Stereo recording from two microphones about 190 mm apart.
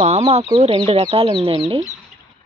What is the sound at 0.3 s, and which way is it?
Speech, 30° right (ahead or behind).